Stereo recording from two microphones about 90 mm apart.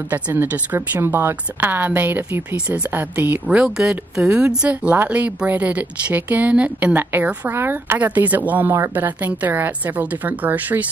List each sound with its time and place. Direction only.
0.1 s speech: 20° right (ahead or behind)
3.4 s speech: 10° right (ahead or behind)